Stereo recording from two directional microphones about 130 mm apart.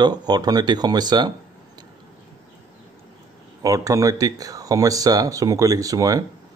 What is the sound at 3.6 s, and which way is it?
Speech, 25° right (ahead or behind).